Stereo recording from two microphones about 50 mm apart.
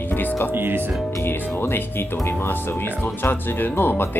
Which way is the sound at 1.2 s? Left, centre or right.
Left.